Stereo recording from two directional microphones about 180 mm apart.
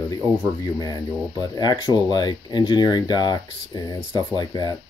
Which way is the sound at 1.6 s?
20° left (ahead or behind).